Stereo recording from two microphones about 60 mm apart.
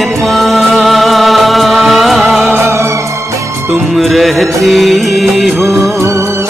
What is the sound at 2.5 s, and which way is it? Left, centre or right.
Music, right.